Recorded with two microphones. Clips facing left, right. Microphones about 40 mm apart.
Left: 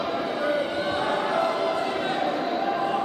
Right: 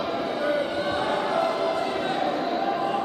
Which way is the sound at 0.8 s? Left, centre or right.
Centre.